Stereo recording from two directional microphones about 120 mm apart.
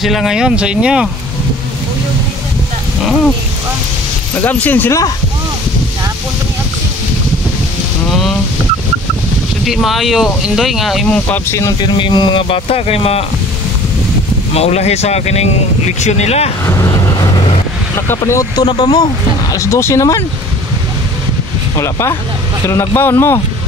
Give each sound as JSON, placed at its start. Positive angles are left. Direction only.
{"t": 0.0, "sound": "speech", "side_deg": 0}
{"t": 4.4, "sound": "speech", "side_deg": 15}
{"t": 9.7, "sound": "speech", "side_deg": 0}
{"t": 11.1, "sound": "speech", "side_deg": 10}
{"t": 11.8, "sound": "speech", "side_deg": 40}
{"t": 14.5, "sound": "speech", "side_deg": 60}
{"t": 16.6, "sound": "vehicle", "side_deg": 25}
{"t": 17.9, "sound": "speech", "side_deg": 20}
{"t": 18.7, "sound": "speech", "side_deg": 35}
{"t": 19.5, "sound": "speech", "side_deg": 25}
{"t": 21.7, "sound": "speech", "side_deg": 25}